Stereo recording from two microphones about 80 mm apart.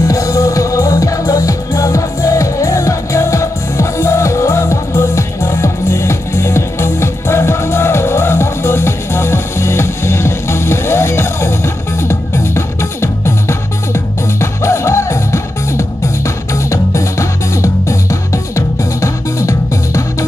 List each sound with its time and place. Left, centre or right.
0.1 s music: left